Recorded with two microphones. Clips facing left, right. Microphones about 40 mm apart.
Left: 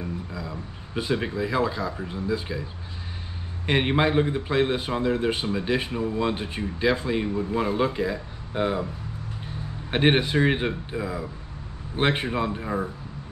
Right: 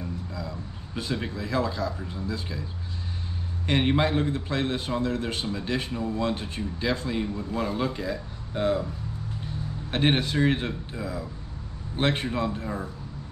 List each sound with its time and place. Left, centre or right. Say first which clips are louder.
0.0 s speech: left 2 dB; centre
3.6 s a man's voice: left 2 dB; centre
9.8 s a man's voice: left 3 dB; centre